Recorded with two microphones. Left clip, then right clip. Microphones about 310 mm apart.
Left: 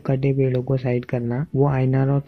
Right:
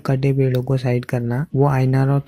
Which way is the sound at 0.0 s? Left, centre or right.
Right.